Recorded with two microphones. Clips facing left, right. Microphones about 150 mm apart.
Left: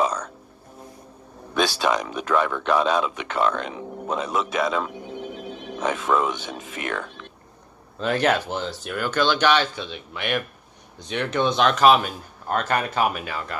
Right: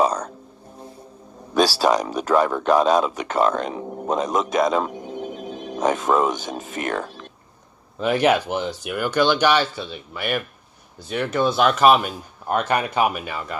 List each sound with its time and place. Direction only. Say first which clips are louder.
0.0 s a sound: right 4 dB; 35° right (ahead or behind)
1.5 s a man's voice: right 4 dB; 35° right (ahead or behind)
8.0 s speech: right 3 dB; 10° right (ahead or behind)